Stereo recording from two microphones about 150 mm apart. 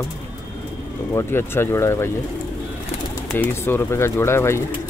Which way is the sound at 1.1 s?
15° left (ahead or behind).